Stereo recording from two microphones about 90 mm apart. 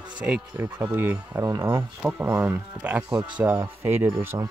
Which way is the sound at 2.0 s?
10° right (ahead or behind).